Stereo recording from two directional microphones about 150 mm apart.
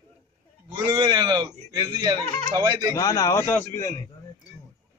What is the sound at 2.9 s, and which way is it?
A man's voice, 20° left (ahead or behind).